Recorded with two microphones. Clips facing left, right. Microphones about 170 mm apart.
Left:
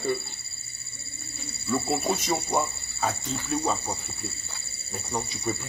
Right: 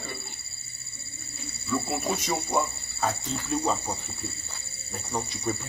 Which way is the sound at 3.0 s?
5° left (ahead or behind).